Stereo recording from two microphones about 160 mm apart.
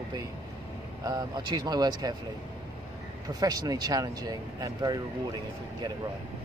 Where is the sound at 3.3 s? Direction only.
25° right (ahead or behind).